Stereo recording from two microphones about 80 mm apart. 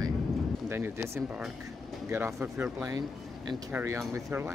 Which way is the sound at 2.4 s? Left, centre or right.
Right.